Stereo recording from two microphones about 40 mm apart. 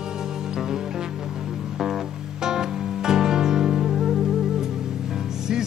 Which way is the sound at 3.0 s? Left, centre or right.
Centre.